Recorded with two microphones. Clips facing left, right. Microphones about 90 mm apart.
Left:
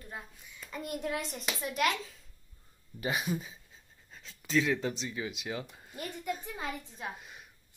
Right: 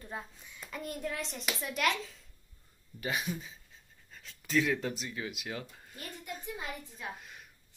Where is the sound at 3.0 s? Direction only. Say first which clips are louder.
Left 3 dB; 5° left (ahead or behind).